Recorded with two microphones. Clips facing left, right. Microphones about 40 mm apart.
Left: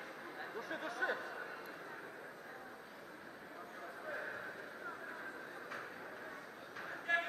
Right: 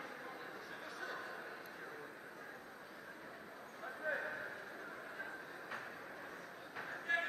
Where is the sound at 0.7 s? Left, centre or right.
Left.